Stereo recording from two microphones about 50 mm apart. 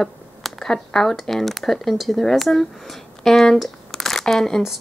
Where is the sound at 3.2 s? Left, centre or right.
Centre.